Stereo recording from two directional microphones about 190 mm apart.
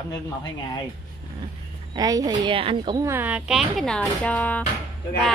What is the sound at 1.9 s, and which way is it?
A woman's voice, 20° right (ahead or behind).